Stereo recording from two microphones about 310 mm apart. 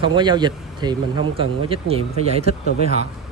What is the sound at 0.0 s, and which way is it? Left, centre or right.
Speech, centre.